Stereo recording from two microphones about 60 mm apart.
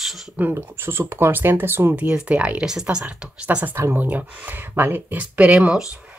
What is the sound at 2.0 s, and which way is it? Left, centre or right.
Speech, centre.